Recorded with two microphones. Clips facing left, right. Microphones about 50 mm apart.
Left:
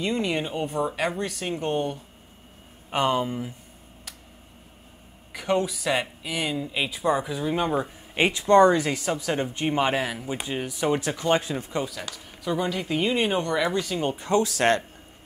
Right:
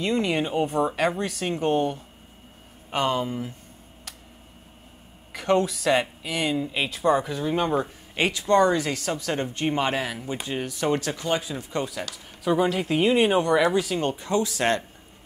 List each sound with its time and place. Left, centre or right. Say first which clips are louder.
0.0 s speech: right 2 dB; centre
2.9 s speech: left 1 dB; centre
3.3 s speech: even; centre
5.3 s speech: right 2 dB; centre
8.2 s speech: left 3 dB; left
8.8 s speech: left 1 dB; centre
11.2 s speech: left 5 dB; left
11.8 s speech: right 1 dB; centre
14.1 s speech: left 2 dB; left